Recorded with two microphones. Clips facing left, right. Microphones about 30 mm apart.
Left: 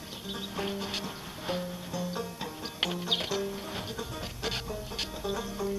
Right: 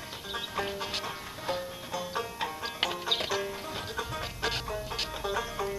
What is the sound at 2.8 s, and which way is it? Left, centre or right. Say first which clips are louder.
Music: even; centre.